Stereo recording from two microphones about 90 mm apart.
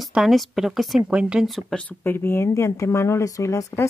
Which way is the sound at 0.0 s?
Centre (ahead or behind).